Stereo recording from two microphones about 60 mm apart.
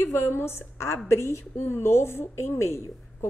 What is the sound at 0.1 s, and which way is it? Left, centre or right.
A woman's voice, left.